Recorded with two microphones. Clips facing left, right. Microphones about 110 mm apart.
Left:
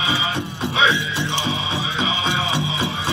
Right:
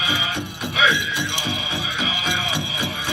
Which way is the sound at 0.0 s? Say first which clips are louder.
Left 2 dB; 30° left (ahead or behind).